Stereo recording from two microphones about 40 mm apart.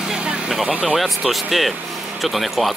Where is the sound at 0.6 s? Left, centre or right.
Right.